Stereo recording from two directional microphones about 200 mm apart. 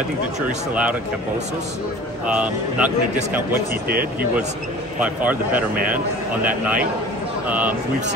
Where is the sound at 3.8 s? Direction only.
45° right (ahead or behind).